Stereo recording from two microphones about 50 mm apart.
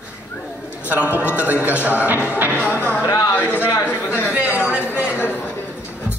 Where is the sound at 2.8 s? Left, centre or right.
Left.